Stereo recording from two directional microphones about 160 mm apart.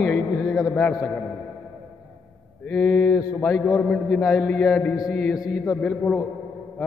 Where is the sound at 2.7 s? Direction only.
5° left (ahead or behind).